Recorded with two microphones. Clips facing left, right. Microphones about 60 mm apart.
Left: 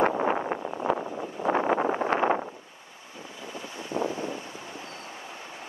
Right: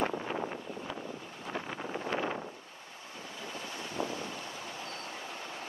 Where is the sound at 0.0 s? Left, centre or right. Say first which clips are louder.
Left 9 dB; left.